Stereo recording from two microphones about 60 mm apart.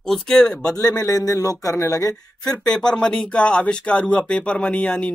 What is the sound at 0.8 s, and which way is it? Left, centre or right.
A man's voice, left.